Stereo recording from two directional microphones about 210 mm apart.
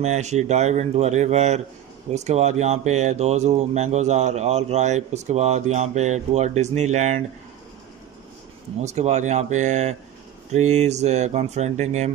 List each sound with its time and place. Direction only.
0.0 s speech: 35° right (ahead or behind)
8.8 s speech: 30° right (ahead or behind)